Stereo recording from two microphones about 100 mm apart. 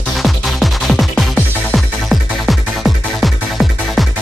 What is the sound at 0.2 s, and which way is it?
Music, centre (ahead or behind).